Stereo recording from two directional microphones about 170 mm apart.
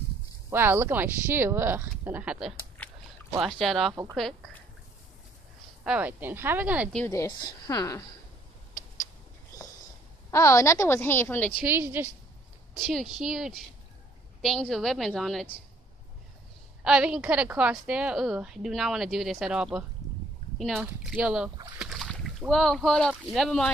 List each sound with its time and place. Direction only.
0.5 s speech: 15° right (ahead or behind)
2.8 s a sound: 5° left (ahead or behind)
3.3 s a woman's voice: centre (ahead or behind)
3.9 s speech: 20° right (ahead or behind)
5.9 s speech: 10° right (ahead or behind)
7.1 s speech: 15° left (ahead or behind)
10.3 s a woman's voice: 15° left (ahead or behind)
11.6 s speech: 10° right (ahead or behind)
12.7 s a woman's voice: centre (ahead or behind)
16.8 s a woman's voice: 5° right (ahead or behind)